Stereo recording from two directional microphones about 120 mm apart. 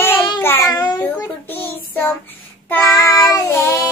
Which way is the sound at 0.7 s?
35° left (ahead or behind).